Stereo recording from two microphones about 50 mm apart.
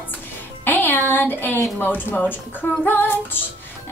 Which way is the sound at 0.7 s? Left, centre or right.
Left.